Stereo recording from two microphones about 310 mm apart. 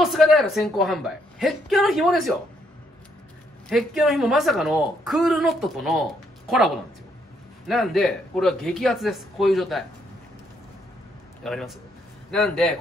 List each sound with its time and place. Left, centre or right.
0.0 s a woman's voice: centre
3.6 s a woman's voice: centre
7.6 s a woman's voice: centre
11.4 s a woman's voice: centre